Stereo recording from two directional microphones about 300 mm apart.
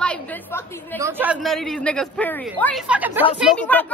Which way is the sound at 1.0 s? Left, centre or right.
Centre.